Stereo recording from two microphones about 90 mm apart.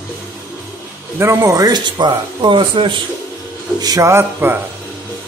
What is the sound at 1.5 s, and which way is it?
Speech, 50° right (ahead or behind).